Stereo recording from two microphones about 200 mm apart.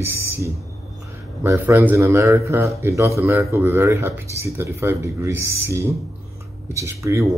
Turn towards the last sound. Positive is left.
turn(degrees=-15)  # may be behind; listen again after turning